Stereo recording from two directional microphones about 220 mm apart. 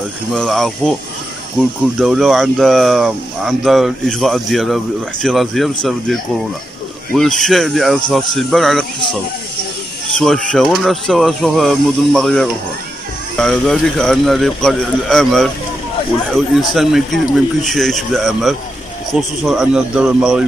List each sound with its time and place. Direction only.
0.3 s speech: 5° left (ahead or behind)